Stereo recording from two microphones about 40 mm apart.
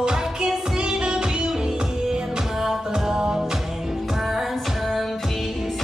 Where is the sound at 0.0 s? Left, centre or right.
Centre.